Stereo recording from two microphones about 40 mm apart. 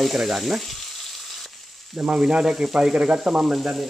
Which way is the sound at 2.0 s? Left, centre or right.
Right.